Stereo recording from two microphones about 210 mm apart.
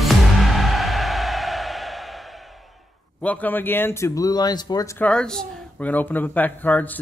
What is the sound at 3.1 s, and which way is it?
Speech, 5° left (ahead or behind).